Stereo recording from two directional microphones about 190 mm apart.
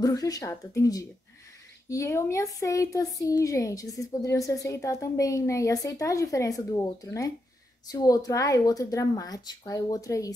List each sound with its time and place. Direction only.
0.0 s speech: 20° left (ahead or behind)